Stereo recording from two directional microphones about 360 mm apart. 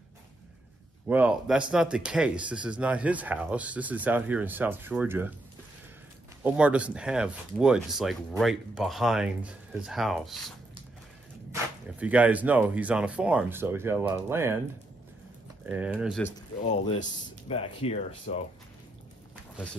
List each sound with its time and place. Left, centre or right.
1.0 s speech: centre
6.4 s speech: centre
11.5 s speech: centre
15.6 s speech: centre
16.6 s speech: centre
19.5 s speech: centre